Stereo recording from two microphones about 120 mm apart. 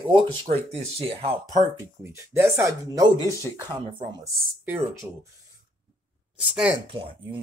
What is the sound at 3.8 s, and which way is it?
Speech, 45° right (ahead or behind).